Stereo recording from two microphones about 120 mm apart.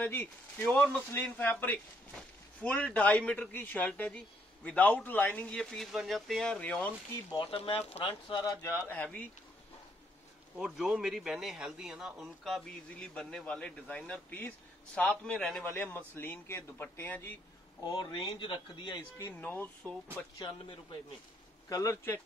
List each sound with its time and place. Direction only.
0.0 s a man's voice: 15° left (ahead or behind)
7.5 s speech: 55° left (ahead or behind)
8.8 s a man's voice: 10° left (ahead or behind)
10.5 s a man's voice: 5° right (ahead or behind); by 17.3 s 20° left (ahead or behind)
17.8 s speech: 40° left (ahead or behind)
19.4 s a man's voice: 15° left (ahead or behind)
20.3 s speech: 40° left (ahead or behind)
21.6 s speech: 25° left (ahead or behind)